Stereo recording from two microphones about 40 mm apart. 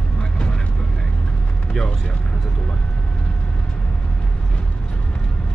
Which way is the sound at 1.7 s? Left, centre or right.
Left.